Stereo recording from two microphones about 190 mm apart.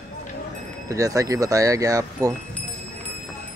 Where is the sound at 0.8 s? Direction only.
15° right (ahead or behind).